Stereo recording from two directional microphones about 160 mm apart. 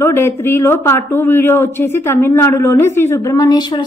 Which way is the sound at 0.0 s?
15° left (ahead or behind).